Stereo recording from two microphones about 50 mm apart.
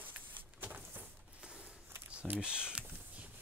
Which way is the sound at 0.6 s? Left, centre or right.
Right.